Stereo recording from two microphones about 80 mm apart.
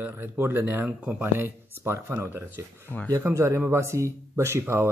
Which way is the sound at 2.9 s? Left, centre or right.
Left.